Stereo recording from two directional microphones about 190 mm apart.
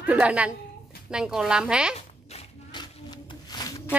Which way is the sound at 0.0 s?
5° right (ahead or behind).